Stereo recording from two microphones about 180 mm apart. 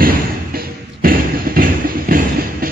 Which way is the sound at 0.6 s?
55° right (ahead or behind).